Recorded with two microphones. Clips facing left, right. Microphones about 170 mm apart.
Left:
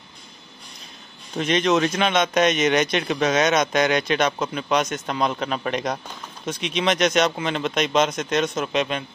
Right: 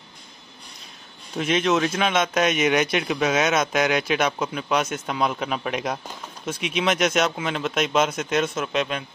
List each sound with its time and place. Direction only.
1.3 s speech: 5° right (ahead or behind)